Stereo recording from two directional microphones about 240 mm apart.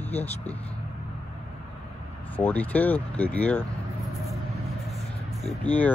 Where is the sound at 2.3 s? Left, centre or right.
Centre.